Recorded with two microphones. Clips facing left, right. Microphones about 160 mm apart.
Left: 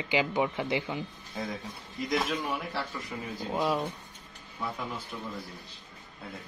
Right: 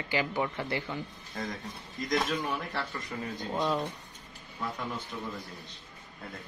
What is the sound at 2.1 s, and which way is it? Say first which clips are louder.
Speech: even; 5° left (ahead or behind).